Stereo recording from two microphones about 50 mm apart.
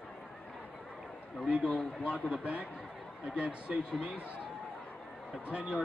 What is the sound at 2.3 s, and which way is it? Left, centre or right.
Speech, right.